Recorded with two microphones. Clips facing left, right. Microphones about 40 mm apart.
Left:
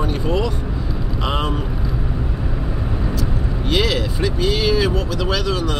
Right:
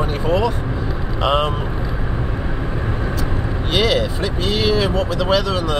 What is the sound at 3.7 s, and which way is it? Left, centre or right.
Speech, centre.